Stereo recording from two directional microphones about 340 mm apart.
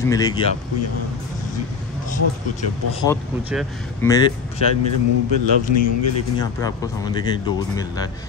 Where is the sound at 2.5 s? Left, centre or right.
Centre.